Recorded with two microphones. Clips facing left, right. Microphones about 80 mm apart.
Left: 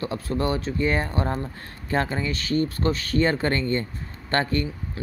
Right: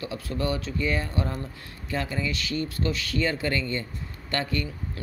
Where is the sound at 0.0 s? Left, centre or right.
Left.